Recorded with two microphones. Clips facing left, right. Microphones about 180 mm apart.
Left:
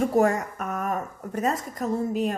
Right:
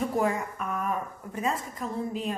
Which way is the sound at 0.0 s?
45° left (ahead or behind).